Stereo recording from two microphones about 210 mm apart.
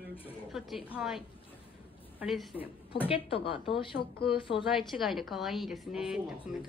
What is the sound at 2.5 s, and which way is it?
A woman's voice, 25° left (ahead or behind).